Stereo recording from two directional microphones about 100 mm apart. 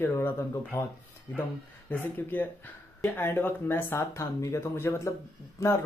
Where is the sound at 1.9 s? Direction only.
20° left (ahead or behind).